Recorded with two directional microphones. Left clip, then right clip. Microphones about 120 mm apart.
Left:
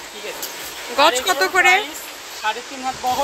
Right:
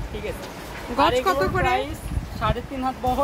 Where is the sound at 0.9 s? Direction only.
15° left (ahead or behind).